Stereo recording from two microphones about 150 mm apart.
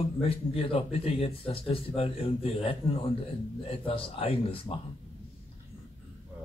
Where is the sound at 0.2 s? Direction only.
40° left (ahead or behind).